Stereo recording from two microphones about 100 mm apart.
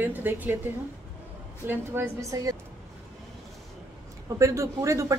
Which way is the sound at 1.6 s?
20° right (ahead or behind).